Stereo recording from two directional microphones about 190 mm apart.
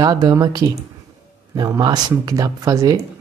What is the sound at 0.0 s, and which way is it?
Speech, 20° right (ahead or behind).